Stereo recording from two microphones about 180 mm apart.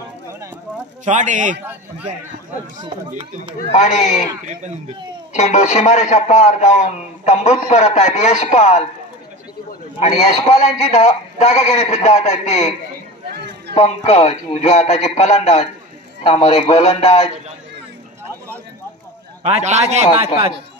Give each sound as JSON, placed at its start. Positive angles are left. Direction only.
{"t": 1.0, "sound": "a man's voice", "side_deg": -40}
{"t": 1.6, "sound": "a man's voice", "side_deg": -10}
{"t": 3.1, "sound": "a man's voice", "side_deg": -40}
{"t": 3.7, "sound": "a man's voice", "side_deg": 40}
{"t": 5.3, "sound": "a man's voice", "side_deg": 40}
{"t": 13.3, "sound": "a sound", "side_deg": -65}
{"t": 13.7, "sound": "a man's voice", "side_deg": 35}
{"t": 19.4, "sound": "a man's voice", "side_deg": -35}